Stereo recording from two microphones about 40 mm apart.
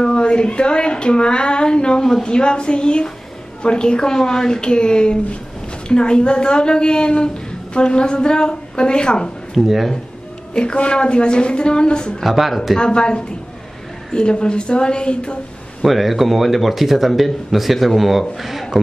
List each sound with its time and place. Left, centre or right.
0.0 s a woman's voice: left
9.5 s speech: centre
10.5 s a woman's voice: left
12.2 s speech: centre
12.7 s a woman's voice: left
15.8 s speech: centre